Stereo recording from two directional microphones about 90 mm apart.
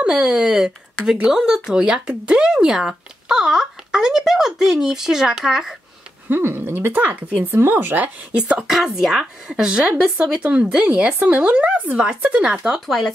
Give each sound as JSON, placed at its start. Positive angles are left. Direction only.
{"t": 0.0, "sound": "speech", "side_deg": -5}
{"t": 6.2, "sound": "speech", "side_deg": -25}
{"t": 12.8, "sound": "speech", "side_deg": 0}